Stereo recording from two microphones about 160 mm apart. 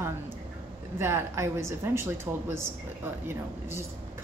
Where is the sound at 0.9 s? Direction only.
15° right (ahead or behind).